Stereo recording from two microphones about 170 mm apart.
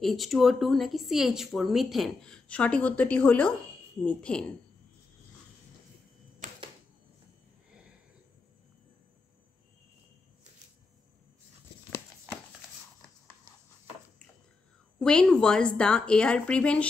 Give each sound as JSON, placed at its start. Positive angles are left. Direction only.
{"t": 0.0, "sound": "speech", "side_deg": 0}
{"t": 6.4, "sound": "typewriter", "side_deg": -45}
{"t": 15.0, "sound": "speech", "side_deg": 5}